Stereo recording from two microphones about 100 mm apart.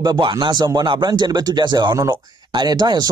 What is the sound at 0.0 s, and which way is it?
Speech, 50° right (ahead or behind).